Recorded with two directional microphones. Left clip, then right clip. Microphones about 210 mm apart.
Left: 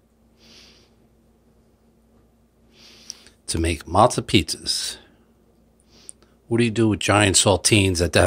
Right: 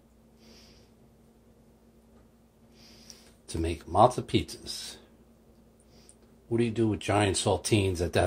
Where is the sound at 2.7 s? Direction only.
35° left (ahead or behind).